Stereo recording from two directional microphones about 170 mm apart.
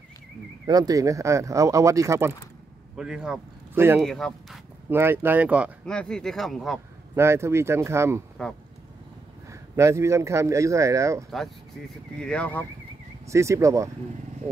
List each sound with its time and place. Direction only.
0.7 s speech: 20° right (ahead or behind)
3.0 s a man's voice: 5° right (ahead or behind)
4.0 s speech: centre (ahead or behind)
4.8 s a man's voice: 15° right (ahead or behind)
5.9 s speech: 5° left (ahead or behind)
7.2 s a man's voice: 15° right (ahead or behind)
8.4 s speech: 5° left (ahead or behind)
9.5 s a man's voice: 15° right (ahead or behind)
11.2 s speech: centre (ahead or behind)
13.3 s a man's voice: 15° right (ahead or behind)